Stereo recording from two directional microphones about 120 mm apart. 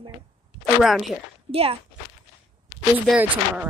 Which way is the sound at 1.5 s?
55° right (ahead or behind).